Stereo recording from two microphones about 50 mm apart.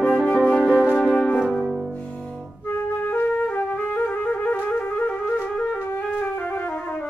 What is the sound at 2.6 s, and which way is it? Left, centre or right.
Music, left.